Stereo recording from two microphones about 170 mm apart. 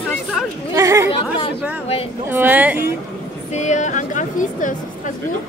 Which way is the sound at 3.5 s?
45° left (ahead or behind).